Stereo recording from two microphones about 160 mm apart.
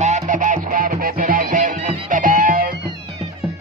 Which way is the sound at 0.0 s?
50° right (ahead or behind).